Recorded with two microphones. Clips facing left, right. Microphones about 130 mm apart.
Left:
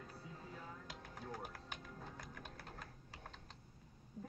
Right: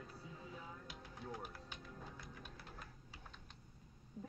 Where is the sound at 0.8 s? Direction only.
45° left (ahead or behind).